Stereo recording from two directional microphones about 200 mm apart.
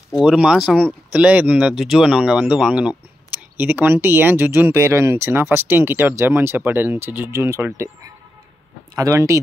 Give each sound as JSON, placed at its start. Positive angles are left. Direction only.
{"t": 0.1, "sound": "speech", "side_deg": -5}